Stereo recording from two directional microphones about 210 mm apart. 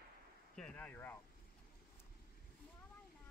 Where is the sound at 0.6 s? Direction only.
5° left (ahead or behind).